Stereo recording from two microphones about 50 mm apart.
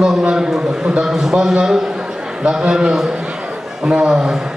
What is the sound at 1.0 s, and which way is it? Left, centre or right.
A man's voice, centre.